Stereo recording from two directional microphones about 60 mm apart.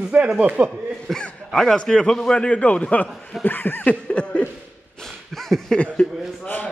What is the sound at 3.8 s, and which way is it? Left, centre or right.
Chuckle, centre.